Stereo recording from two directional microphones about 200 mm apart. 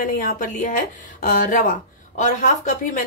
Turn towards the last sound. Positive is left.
turn(degrees=40)  # may be behind; listen again after turning